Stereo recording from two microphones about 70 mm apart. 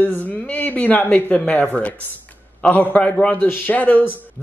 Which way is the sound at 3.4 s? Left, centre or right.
Left.